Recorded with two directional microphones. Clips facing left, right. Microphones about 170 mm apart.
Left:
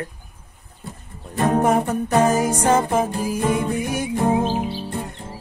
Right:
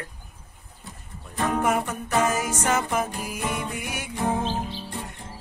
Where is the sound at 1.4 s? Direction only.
35° left (ahead or behind).